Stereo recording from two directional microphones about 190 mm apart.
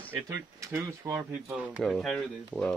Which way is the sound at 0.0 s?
15° right (ahead or behind).